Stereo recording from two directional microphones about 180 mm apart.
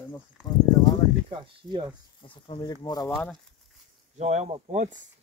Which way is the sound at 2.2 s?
30° left (ahead or behind).